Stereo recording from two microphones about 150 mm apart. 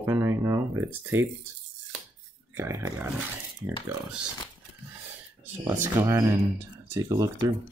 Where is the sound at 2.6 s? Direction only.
20° right (ahead or behind).